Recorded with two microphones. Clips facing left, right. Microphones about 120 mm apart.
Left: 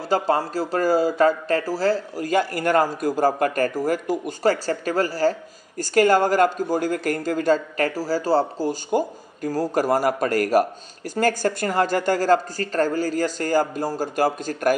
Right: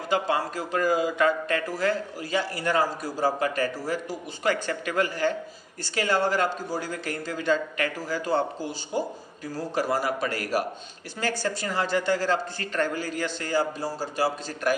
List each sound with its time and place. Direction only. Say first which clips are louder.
0.1 s speech: left 5 dB; 35° left (ahead or behind)
2.2 s speech: left 6 dB; 50° left (ahead or behind)
8.9 s speech: left 6 dB; 45° left (ahead or behind)